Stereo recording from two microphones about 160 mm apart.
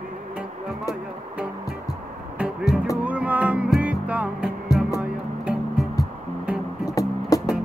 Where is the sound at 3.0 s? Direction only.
10° right (ahead or behind).